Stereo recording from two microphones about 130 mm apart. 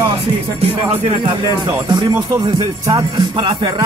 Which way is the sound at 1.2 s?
35° right (ahead or behind).